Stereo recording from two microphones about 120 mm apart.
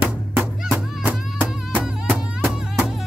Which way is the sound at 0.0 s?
10° right (ahead or behind).